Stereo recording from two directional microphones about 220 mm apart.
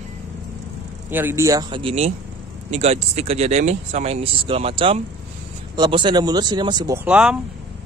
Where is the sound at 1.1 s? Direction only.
10° right (ahead or behind).